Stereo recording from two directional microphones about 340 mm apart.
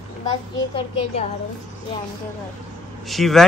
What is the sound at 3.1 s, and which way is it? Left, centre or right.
Speech, centre.